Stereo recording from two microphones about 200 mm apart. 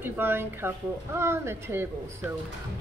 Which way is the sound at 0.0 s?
10° right (ahead or behind).